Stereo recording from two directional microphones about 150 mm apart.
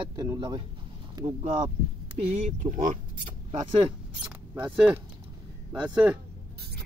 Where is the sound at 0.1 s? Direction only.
25° right (ahead or behind).